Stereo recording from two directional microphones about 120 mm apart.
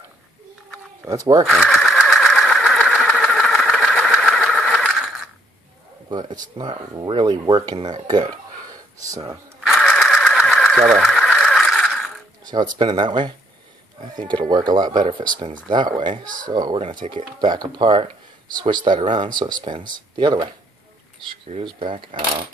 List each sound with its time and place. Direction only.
1.0 s speech: 30° right (ahead or behind)
1.5 s sewing machine: 5° left (ahead or behind)
2.0 s engine: centre (ahead or behind)
6.0 s speech: 35° right (ahead or behind)
9.8 s engine: 5° left (ahead or behind)
12.4 s speech: 35° right (ahead or behind)
14.5 s speech: 40° right (ahead or behind)
21.6 s speech: 45° right (ahead or behind)